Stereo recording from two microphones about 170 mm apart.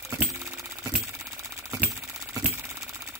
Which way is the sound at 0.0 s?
15° right (ahead or behind).